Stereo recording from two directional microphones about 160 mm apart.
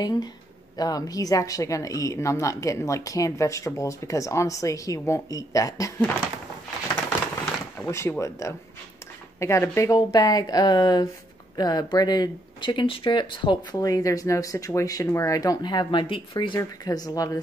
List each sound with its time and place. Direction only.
0.0 s speech: 25° left (ahead or behind)
7.8 s speech: 20° left (ahead or behind)